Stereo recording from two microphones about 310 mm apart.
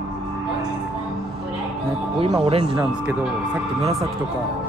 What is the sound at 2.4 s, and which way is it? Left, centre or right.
Speech, centre.